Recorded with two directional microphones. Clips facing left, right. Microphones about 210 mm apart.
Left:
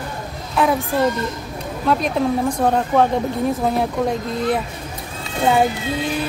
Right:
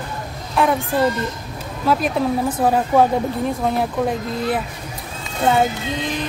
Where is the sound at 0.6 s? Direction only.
Centre (ahead or behind).